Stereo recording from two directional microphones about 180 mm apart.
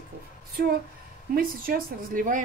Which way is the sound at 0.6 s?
55° right (ahead or behind).